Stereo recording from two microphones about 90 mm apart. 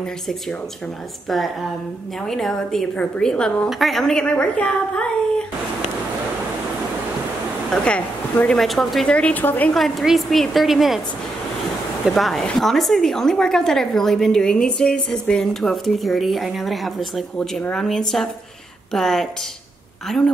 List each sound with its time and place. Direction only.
2.2 s a woman's voice: 5° left (ahead or behind)
7.7 s a woman's voice: 10° left (ahead or behind)
9.1 s a woman's voice: 15° left (ahead or behind)
9.7 s speech: centre (ahead or behind)
12.2 s speech: 5° left (ahead or behind)
17.4 s a woman's voice: 10° left (ahead or behind)